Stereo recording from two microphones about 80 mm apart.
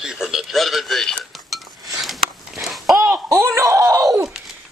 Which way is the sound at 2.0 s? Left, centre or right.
Centre.